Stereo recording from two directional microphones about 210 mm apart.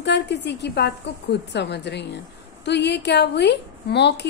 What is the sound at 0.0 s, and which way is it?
A woman's voice, 55° left (ahead or behind).